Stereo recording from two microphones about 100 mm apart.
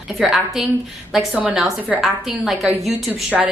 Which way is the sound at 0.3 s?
5° right (ahead or behind).